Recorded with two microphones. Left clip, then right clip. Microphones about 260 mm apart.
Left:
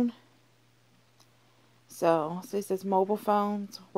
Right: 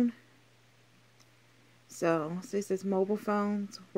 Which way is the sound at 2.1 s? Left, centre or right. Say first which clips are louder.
Left 4 dB; left.